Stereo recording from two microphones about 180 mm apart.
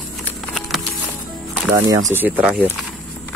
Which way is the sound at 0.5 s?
Centre (ahead or behind).